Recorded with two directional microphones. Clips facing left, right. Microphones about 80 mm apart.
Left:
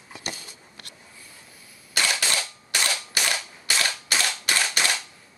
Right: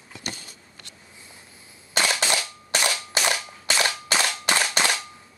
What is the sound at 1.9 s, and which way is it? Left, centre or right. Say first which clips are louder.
Cap gun: right 2 dB; right.